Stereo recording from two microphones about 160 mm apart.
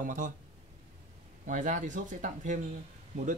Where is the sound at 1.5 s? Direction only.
55° right (ahead or behind).